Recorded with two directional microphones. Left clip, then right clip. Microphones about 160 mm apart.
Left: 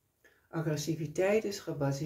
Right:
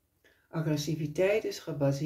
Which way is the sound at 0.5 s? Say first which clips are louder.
Right 2 dB; 30° left (ahead or behind).